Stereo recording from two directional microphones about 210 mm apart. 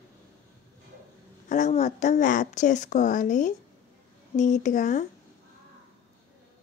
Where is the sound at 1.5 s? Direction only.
35° left (ahead or behind).